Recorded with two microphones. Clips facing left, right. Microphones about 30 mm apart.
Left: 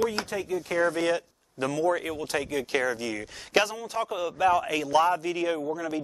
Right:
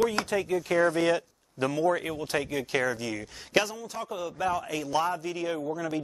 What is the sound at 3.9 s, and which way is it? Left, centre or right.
Speech, left.